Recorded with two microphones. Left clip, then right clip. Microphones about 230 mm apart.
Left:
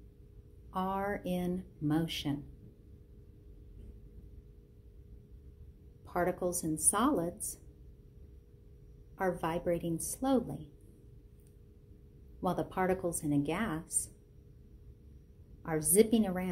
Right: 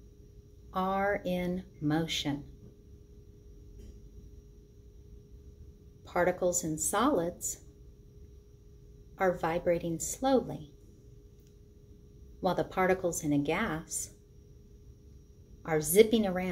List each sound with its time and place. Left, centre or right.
0.7 s speech: left
6.0 s speech: left
9.1 s speech: left
12.4 s speech: left
15.6 s speech: left